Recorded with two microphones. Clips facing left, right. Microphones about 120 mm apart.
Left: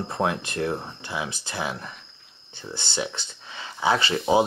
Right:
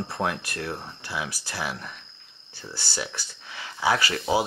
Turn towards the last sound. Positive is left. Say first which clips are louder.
# left 1 dB
turn(degrees=25)  # may be behind; listen again after turning